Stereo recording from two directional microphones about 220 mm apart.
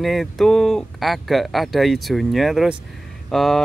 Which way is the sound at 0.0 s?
Centre (ahead or behind).